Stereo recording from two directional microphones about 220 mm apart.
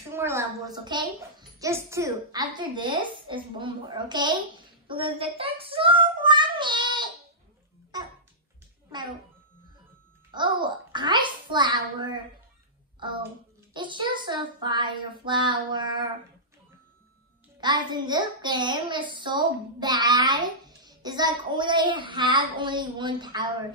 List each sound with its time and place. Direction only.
0.1 s a woman's voice: 10° right (ahead or behind)
7.9 s music: 20° right (ahead or behind)
10.3 s a child's voice: 20° right (ahead or behind)
17.6 s a child's voice: 20° right (ahead or behind)